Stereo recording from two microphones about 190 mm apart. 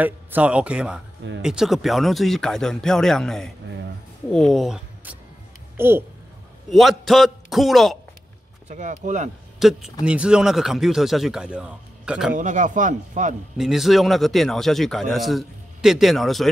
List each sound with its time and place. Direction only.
0.0 s a man's voice: 10° right (ahead or behind)
6.7 s a man's voice: centre (ahead or behind)
8.6 s speech: 40° right (ahead or behind)
9.6 s a man's voice: centre (ahead or behind)
12.4 s speech: 40° right (ahead or behind)
13.6 s a man's voice: centre (ahead or behind)